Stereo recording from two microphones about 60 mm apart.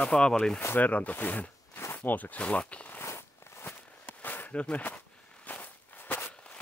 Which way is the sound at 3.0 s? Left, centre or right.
Left.